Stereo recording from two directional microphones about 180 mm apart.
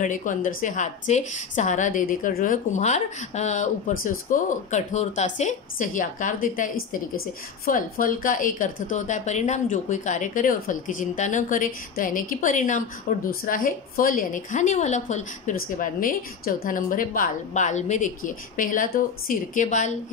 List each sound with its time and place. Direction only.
0.0 s a woman's voice: 45° left (ahead or behind)